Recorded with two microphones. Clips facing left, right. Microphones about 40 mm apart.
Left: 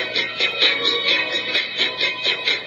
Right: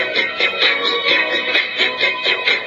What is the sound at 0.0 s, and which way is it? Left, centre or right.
Music, right.